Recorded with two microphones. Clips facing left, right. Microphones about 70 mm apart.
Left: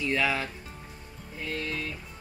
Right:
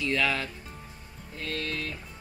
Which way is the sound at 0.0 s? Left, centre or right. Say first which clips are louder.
Even; centre.